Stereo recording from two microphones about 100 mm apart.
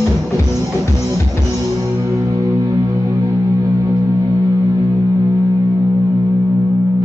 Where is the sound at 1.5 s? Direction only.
30° right (ahead or behind).